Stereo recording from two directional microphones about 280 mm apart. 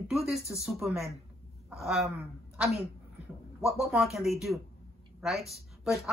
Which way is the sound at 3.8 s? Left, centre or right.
Centre.